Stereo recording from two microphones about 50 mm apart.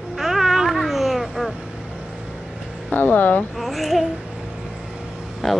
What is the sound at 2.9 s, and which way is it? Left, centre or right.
Speech, left.